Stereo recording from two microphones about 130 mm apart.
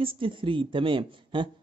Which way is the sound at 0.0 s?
45° right (ahead or behind).